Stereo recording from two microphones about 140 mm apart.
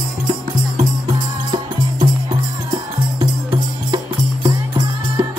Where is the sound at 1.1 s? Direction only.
35° right (ahead or behind).